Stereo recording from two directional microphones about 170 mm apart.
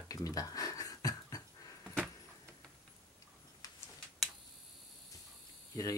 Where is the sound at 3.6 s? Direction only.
25° left (ahead or behind).